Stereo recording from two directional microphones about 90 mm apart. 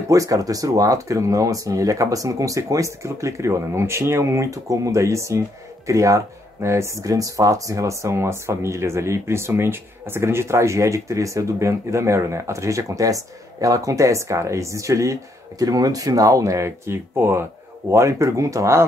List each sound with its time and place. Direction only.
0.1 s speech: 40° right (ahead or behind)